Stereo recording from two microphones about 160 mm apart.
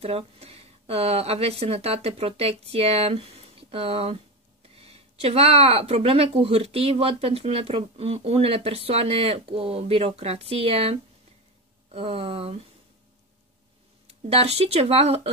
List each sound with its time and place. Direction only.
0.0 s speech: 40° right (ahead or behind)
14.3 s speech: 40° right (ahead or behind)